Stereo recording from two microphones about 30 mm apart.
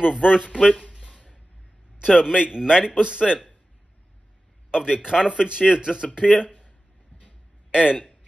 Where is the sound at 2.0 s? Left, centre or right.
Centre.